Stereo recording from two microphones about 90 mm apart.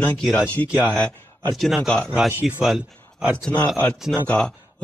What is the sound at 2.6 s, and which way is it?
A man's voice, 5° right (ahead or behind).